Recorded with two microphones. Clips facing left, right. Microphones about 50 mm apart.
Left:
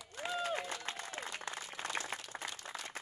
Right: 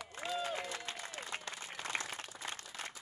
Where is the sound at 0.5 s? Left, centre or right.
Left.